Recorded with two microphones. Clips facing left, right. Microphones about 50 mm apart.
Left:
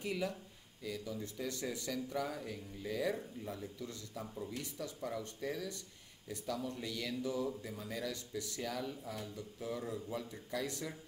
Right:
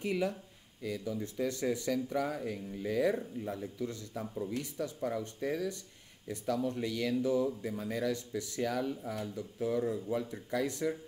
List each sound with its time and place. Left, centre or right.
0.0 s speech: right
1.4 s speech: right